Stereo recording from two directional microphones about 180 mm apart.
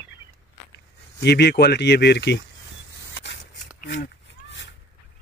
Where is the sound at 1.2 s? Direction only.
70° left (ahead or behind).